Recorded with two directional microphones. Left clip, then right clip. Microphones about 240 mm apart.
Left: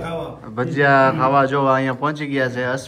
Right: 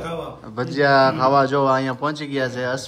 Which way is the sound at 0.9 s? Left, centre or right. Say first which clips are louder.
Left 1 dB; centre.